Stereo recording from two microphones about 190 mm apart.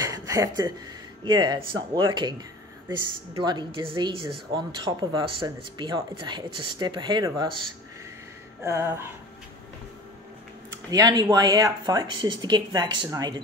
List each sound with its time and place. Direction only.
0.0 s a sound: 15° right (ahead or behind)
1.2 s speech: 20° right (ahead or behind)
3.3 s speech: 25° right (ahead or behind)
8.6 s music: 15° right (ahead or behind)
10.9 s speech: 20° right (ahead or behind)